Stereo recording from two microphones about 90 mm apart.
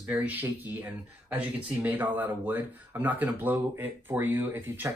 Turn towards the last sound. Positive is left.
turn(degrees=-25)  # may be behind; listen again after turning